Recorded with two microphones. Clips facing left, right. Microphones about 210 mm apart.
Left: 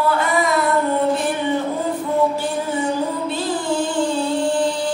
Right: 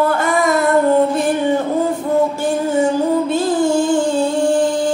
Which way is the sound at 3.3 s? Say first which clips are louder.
Right 7 dB; 45° right (ahead or behind).